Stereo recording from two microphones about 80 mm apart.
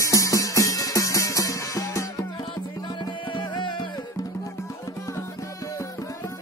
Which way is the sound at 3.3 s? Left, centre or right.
Left.